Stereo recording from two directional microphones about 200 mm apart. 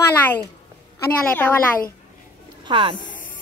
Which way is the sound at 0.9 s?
10° left (ahead or behind).